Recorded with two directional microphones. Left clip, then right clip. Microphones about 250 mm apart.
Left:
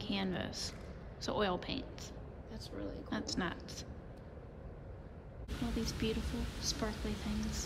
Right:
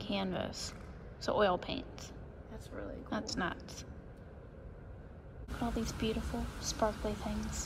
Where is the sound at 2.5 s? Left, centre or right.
Right.